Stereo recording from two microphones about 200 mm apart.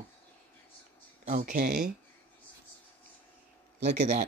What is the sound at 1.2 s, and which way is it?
Speech, 40° right (ahead or behind).